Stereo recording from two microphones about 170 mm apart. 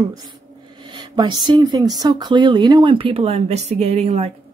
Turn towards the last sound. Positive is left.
turn(degrees=-40)  # may be behind; listen again after turning